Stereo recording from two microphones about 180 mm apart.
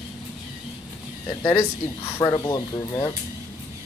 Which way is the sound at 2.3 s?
25° left (ahead or behind).